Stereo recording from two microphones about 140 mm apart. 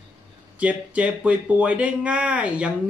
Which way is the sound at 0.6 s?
10° right (ahead or behind).